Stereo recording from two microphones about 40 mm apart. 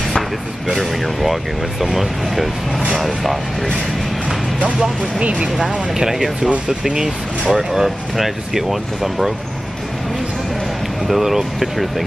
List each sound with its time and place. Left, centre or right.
0.7 s speech: centre
4.7 s speech: centre
6.9 s speech: centre
7.5 s speech: centre
11.1 s speech: centre